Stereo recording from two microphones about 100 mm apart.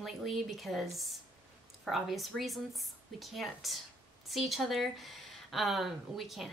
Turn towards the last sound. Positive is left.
turn(degrees=0)  # may be behind; listen again after turning